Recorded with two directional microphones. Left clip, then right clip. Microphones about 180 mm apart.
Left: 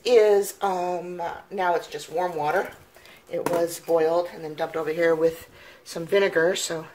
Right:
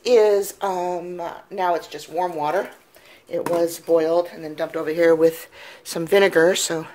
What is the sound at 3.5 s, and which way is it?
Speech, 45° right (ahead or behind).